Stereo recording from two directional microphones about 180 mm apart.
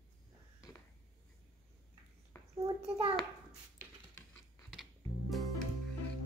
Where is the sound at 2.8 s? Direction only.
35° right (ahead or behind).